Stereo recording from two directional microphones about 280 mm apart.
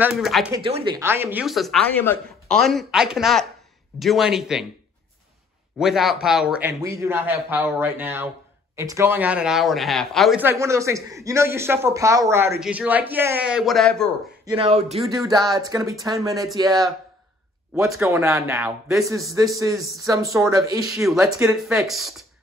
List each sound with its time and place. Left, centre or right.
0.0 s speech: centre
0.6 s speech: right
1.0 s speech: centre
5.8 s speech: centre
10.5 s speech: centre
14.4 s speech: centre